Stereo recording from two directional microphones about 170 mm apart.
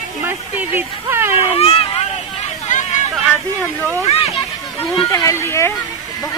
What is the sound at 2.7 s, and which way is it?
Hubbub, 45° left (ahead or behind).